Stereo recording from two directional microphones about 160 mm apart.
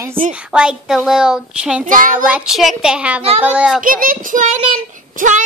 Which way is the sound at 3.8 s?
60° right (ahead or behind).